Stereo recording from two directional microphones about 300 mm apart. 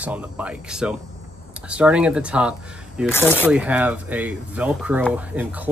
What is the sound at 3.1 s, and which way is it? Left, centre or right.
Speech, centre.